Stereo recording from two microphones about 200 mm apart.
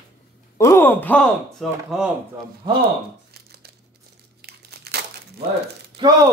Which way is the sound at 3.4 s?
50° right (ahead or behind).